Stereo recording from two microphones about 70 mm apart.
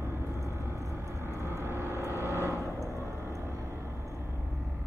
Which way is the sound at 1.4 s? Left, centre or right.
Right.